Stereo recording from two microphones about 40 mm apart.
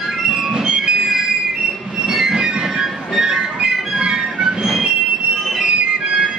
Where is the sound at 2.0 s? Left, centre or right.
Centre.